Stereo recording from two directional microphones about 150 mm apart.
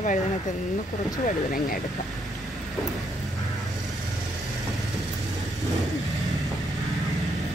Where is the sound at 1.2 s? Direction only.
60° left (ahead or behind).